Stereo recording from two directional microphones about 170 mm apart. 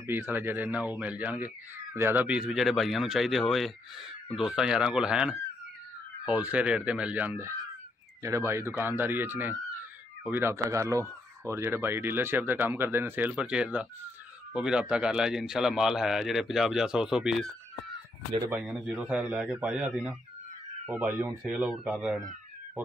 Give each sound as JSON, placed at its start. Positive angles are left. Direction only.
{"t": 0.0, "sound": "speech", "side_deg": -15}
{"t": 18.5, "sound": "speech", "side_deg": -5}